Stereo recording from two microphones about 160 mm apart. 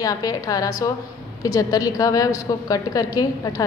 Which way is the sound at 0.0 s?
20° left (ahead or behind).